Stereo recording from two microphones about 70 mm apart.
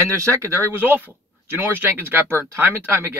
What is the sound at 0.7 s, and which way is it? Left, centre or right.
Speech, right.